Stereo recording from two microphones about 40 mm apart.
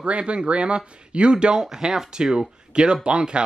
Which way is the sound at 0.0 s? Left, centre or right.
Right.